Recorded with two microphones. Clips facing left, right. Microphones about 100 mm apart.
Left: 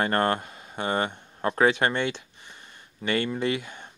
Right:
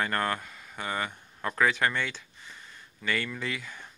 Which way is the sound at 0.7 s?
60° left (ahead or behind).